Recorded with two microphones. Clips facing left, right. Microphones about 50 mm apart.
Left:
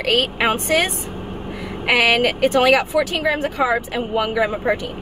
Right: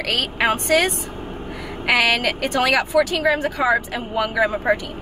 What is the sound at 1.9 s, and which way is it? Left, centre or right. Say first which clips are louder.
A woman's voice: left 2 dB; left.